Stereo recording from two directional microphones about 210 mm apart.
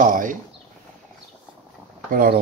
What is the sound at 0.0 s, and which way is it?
Speech, 40° right (ahead or behind).